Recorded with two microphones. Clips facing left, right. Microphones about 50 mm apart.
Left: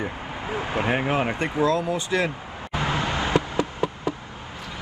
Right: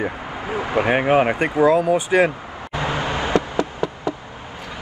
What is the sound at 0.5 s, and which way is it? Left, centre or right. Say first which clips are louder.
Speech: right 5 dB; right.